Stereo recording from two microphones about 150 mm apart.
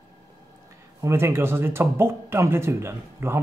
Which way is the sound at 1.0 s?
15° right (ahead or behind).